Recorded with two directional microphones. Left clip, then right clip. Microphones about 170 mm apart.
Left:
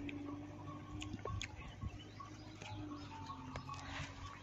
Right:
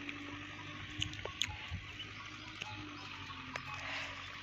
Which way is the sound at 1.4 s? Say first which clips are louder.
Right 10 dB; 5° left (ahead or behind).